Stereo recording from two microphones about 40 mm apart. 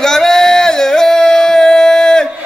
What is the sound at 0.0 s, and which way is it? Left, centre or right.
Music, centre.